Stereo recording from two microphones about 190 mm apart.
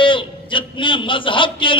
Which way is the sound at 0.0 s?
25° left (ahead or behind).